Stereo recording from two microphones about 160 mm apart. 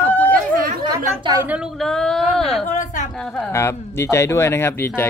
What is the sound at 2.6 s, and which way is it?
Speech, 50° left (ahead or behind).